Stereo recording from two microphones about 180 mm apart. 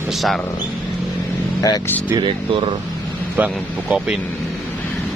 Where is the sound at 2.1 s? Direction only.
30° right (ahead or behind).